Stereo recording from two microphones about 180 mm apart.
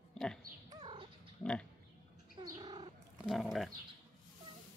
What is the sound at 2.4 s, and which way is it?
Bird, 20° right (ahead or behind).